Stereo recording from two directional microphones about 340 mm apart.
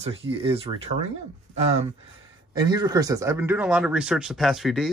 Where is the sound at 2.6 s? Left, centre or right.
Centre.